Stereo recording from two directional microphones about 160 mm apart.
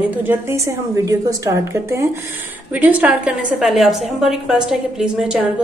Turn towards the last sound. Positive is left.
turn(degrees=-5)  # may be behind; listen again after turning